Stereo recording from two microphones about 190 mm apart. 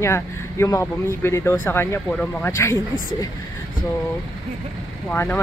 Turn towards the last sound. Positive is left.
turn(degrees=10)  # may be behind; listen again after turning